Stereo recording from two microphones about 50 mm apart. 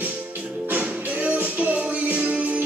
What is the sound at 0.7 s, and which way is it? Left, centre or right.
Music, right.